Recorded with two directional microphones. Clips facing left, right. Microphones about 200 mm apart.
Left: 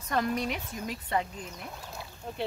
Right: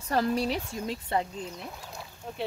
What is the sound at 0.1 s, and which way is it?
Speech, 30° right (ahead or behind).